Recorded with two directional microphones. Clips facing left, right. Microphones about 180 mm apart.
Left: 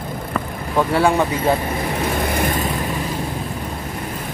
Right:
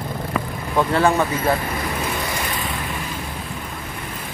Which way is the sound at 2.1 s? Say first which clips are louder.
Left 6 dB; 55° left (ahead or behind).